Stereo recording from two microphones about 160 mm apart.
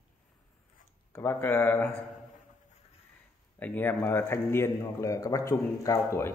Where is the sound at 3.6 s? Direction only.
10° left (ahead or behind).